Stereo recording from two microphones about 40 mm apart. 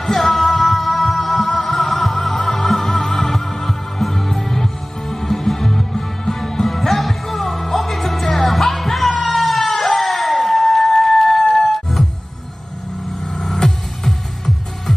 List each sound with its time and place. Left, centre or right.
0.0 s music: centre
9.9 s a sound: centre
13.3 s music: centre